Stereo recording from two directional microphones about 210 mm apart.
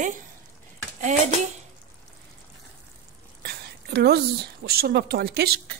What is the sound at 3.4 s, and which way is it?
A woman's voice, 50° right (ahead or behind).